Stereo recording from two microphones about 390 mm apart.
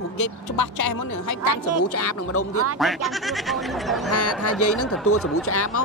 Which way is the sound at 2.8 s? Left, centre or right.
Centre.